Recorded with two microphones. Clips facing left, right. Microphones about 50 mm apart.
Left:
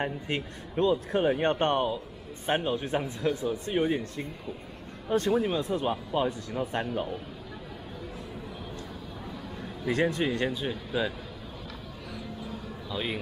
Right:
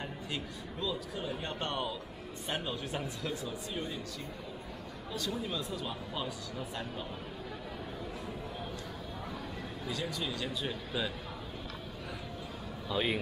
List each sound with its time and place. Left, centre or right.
0.0 s speech: left
9.8 s speech: left
10.5 s speech: centre
12.9 s a man's voice: centre